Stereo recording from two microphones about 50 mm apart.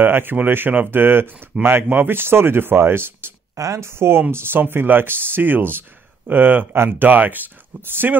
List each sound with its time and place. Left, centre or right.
0.0 s speech: right
3.5 s speech: right
4.3 s speech: right